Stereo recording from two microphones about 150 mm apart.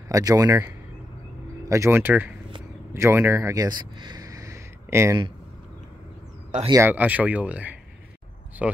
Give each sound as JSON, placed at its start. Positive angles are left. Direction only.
{"t": 0.1, "sound": "speech", "side_deg": -25}
{"t": 6.7, "sound": "speech", "side_deg": -15}